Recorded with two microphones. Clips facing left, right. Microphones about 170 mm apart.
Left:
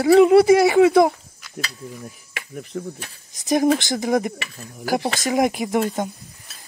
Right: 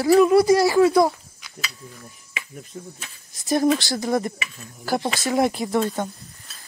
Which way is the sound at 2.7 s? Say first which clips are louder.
Left 8 dB; 85° left.